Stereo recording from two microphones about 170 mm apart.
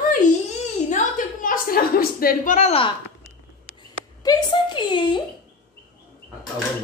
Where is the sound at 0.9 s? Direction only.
50° left (ahead or behind).